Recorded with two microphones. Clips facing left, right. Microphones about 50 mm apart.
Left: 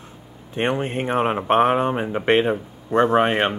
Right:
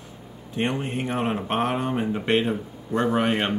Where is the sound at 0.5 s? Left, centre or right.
Left.